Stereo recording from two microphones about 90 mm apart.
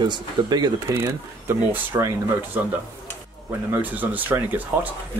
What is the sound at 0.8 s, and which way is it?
Speech, 25° right (ahead or behind).